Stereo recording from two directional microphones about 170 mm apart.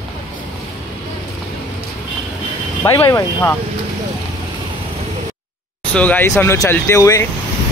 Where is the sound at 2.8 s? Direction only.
20° left (ahead or behind).